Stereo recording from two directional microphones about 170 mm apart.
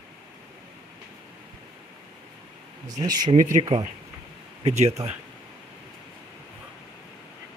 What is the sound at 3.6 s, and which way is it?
Speech, 25° right (ahead or behind).